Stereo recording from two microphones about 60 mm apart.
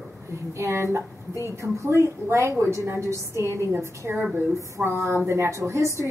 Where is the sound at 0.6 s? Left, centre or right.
Right.